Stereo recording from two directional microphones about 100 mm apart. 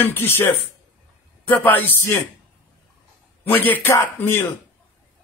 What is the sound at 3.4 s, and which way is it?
Speech, 20° left (ahead or behind).